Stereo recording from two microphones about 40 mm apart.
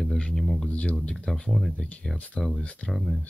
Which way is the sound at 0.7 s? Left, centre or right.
Left.